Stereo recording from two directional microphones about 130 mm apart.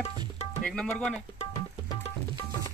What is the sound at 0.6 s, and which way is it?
Speech, 5° left (ahead or behind).